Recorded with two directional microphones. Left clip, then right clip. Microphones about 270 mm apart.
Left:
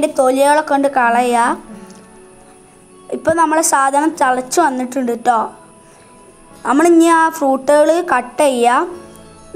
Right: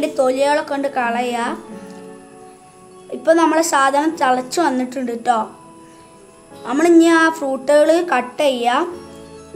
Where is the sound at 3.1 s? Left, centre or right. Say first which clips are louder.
Left 1 dB; centre.